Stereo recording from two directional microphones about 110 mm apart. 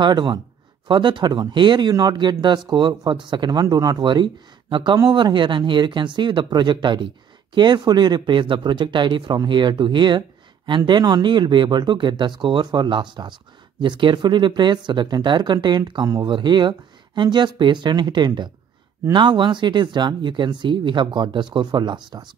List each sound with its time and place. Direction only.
0.0 s speech: 45° right (ahead or behind)